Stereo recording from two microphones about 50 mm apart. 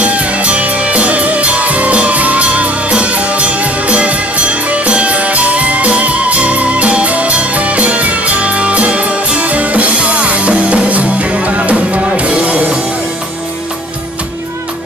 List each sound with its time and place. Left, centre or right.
0.0 s music: right